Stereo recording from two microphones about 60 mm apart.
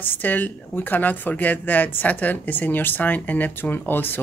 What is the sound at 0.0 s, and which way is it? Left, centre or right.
A woman's voice, left.